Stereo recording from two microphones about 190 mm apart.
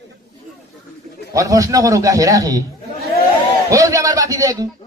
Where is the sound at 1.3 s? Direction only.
15° right (ahead or behind).